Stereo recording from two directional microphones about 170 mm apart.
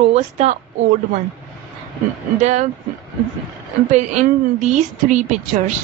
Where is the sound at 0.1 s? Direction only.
40° right (ahead or behind).